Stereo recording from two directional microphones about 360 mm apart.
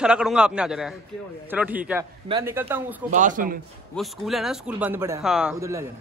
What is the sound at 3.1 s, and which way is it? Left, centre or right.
Speech, right.